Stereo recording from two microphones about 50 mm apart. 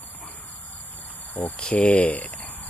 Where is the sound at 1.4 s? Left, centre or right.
Left.